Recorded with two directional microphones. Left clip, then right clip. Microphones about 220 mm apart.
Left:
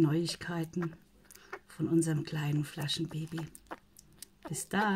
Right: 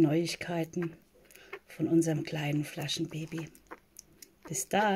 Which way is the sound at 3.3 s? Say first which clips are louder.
Right 1 dB; 25° left (ahead or behind).